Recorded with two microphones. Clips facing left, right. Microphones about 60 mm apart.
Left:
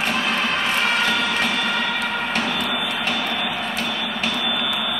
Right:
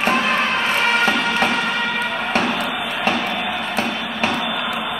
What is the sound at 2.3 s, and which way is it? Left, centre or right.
Music, right.